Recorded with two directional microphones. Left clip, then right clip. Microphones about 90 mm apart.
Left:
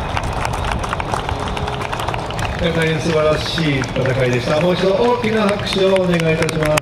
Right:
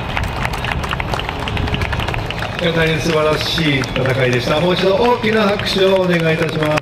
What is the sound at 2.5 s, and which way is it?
A man's voice, 25° right (ahead or behind).